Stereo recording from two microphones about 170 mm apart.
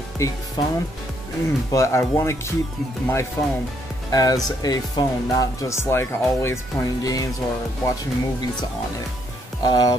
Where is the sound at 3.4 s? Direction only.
15° left (ahead or behind).